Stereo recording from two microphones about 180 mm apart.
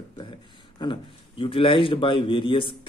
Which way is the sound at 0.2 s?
25° left (ahead or behind).